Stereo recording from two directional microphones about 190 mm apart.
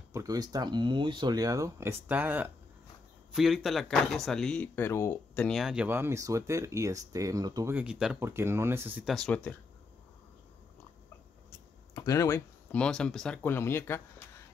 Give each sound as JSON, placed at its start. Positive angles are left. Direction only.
{"t": 0.1, "sound": "speech", "side_deg": -20}
{"t": 7.7, "sound": "speech", "side_deg": -5}
{"t": 11.9, "sound": "speech", "side_deg": 15}